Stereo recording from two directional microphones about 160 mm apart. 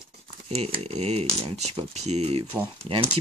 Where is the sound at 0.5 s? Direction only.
40° right (ahead or behind).